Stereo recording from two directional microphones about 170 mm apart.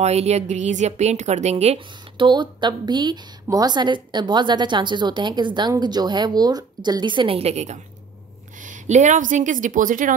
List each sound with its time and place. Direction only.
0.0 s a woman's voice: 40° right (ahead or behind)